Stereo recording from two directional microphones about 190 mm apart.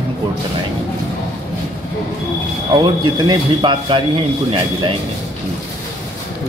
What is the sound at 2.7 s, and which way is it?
Speech, 25° right (ahead or behind).